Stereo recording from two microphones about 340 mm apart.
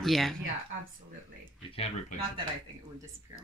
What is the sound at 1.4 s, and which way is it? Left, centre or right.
Speech, centre.